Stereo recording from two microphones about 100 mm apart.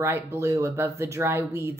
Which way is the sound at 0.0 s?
25° right (ahead or behind).